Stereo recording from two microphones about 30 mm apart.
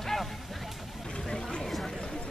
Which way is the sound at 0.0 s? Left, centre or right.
Centre.